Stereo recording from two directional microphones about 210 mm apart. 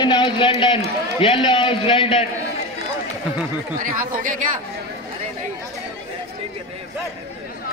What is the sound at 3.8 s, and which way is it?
Speech, 40° right (ahead or behind).